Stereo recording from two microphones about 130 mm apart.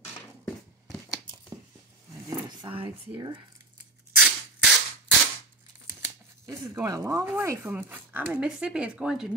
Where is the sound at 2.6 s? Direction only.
40° right (ahead or behind).